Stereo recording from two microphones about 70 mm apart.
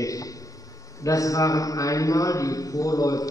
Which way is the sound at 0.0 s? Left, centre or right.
Left.